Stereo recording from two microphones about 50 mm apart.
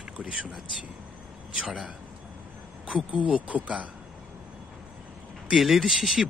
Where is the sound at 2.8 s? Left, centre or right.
Right.